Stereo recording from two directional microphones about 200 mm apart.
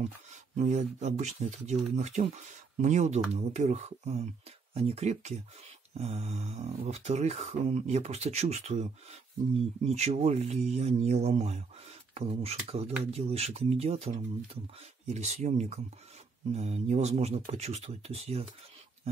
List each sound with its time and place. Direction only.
0.0 s speech: 35° right (ahead or behind)
9.8 s speech: 30° right (ahead or behind)